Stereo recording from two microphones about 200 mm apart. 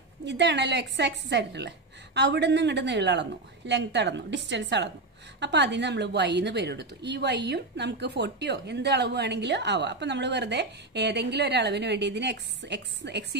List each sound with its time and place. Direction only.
0.2 s a woman's voice: 60° right (ahead or behind)